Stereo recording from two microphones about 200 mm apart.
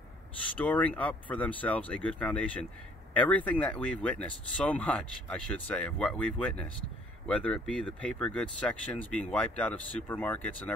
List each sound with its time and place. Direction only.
0.6 s speech: 5° left (ahead or behind)